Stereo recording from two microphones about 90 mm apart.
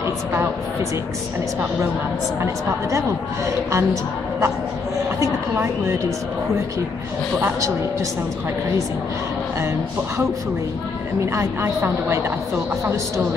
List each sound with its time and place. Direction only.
0.0 s a woman's voice: 30° right (ahead or behind)
2.4 s a woman's voice: 35° right (ahead or behind)
7.3 s a woman's voice: 30° right (ahead or behind)
11.3 s a woman's voice: 30° right (ahead or behind)